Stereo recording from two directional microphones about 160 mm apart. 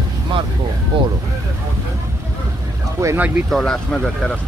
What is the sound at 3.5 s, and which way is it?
Speech, centre (ahead or behind).